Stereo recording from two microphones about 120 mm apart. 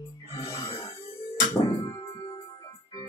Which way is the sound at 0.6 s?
55° left (ahead or behind).